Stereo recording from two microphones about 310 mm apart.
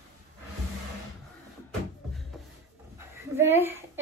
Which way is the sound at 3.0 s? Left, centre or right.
Centre.